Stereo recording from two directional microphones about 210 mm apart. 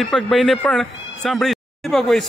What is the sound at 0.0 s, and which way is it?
Speech, centre (ahead or behind).